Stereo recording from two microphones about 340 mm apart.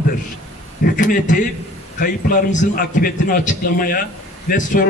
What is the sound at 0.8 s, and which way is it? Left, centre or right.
A man's voice, left.